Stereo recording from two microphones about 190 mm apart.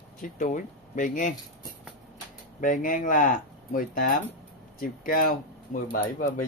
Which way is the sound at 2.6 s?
45° left (ahead or behind).